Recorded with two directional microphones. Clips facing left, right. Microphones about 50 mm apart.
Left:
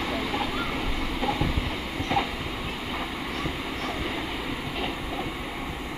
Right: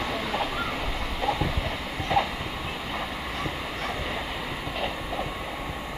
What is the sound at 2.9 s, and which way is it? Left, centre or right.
Vehicle, centre.